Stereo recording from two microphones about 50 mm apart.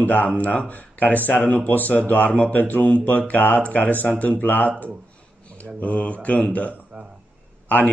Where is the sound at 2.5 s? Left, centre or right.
Left.